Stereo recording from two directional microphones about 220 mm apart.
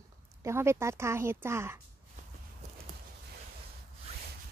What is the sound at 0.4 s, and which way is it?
A woman's voice, 10° right (ahead or behind).